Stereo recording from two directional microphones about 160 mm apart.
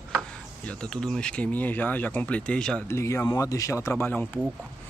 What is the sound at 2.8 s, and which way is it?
A man's voice, 15° left (ahead or behind).